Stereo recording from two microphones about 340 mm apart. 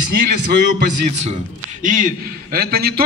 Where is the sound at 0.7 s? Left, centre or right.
Right.